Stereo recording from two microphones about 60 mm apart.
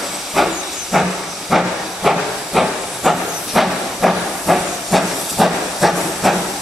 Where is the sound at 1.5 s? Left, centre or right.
Centre.